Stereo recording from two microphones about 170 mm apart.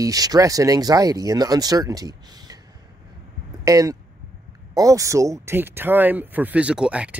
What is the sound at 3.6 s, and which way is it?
Speech, 20° right (ahead or behind).